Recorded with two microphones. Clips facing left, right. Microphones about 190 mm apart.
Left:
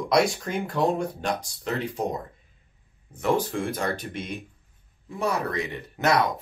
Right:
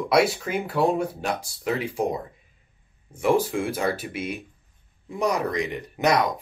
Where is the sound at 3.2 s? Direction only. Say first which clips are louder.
Right 3 dB; 10° right (ahead or behind).